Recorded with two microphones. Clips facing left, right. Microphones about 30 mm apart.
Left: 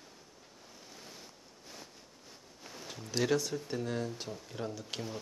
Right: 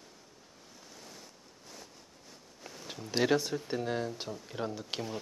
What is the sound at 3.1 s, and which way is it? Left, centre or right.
Speech, right.